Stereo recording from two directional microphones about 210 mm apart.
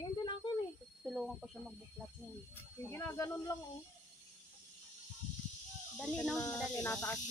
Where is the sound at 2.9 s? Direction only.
10° left (ahead or behind).